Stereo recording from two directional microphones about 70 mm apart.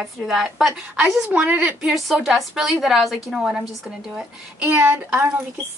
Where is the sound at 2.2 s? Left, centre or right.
Centre.